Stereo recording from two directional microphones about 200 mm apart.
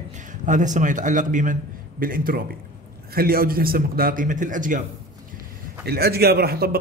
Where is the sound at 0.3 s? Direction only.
40° right (ahead or behind).